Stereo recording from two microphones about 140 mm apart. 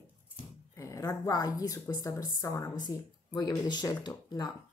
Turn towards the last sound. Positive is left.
turn(degrees=30)  # may be behind; listen again after turning